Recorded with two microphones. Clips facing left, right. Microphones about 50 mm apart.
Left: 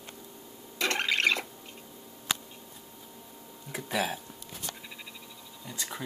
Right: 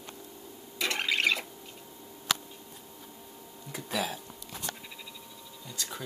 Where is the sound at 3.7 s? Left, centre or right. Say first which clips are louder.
Left 2 dB; centre.